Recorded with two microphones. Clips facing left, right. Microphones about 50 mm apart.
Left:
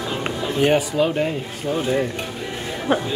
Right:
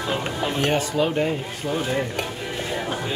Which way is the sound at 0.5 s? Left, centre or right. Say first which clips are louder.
Left 5 dB; centre.